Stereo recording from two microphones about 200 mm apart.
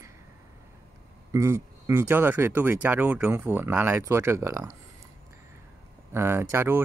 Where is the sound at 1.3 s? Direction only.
15° right (ahead or behind).